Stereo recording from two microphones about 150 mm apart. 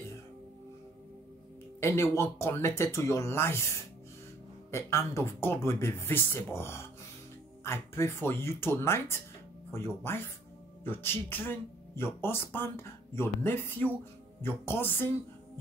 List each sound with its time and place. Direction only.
1.8 s speech: 20° left (ahead or behind)
4.6 s speech: 20° left (ahead or behind)